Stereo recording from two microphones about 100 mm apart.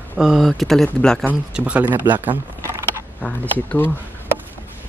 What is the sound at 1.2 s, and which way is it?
Speech, 15° right (ahead or behind).